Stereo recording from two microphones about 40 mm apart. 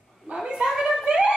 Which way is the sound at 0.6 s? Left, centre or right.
Centre.